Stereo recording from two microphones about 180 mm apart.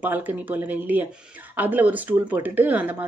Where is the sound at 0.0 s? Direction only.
10° right (ahead or behind).